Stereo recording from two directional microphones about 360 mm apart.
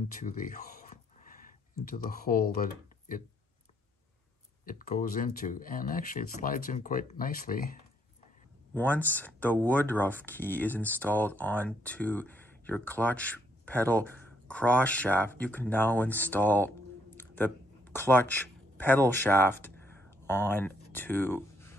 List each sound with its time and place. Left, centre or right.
0.2 s a sound: left
1.9 s speech: left
4.6 s speech: left
8.7 s speech: centre
17.2 s a sound: centre
18.8 s speech: centre